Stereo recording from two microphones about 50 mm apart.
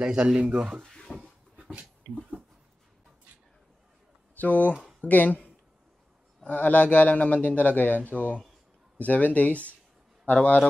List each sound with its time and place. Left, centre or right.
0.0 s speech: centre
0.8 s drawer open or close: centre
1.6 s a sound: right
4.4 s speech: left
6.4 s a man's voice: left